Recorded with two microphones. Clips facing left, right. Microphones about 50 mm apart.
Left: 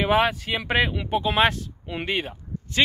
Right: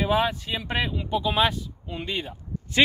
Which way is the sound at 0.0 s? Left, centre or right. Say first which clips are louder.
Left 3 dB; left.